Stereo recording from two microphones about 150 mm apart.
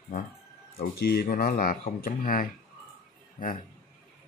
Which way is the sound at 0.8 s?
90° left.